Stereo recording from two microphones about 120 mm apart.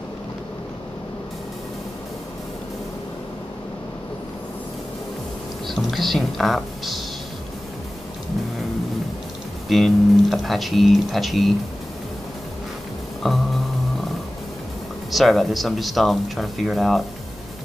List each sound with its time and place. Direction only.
5.7 s speech: centre (ahead or behind)
9.7 s speech: centre (ahead or behind)
13.2 s speech: centre (ahead or behind)
15.0 s speech: centre (ahead or behind)